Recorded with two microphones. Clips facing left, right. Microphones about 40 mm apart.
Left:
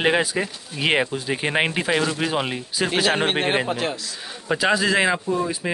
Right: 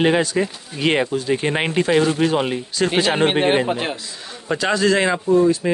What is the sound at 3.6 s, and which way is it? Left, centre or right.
Speech, right.